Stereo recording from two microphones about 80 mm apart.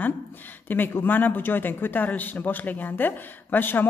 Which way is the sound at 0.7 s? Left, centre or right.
Left.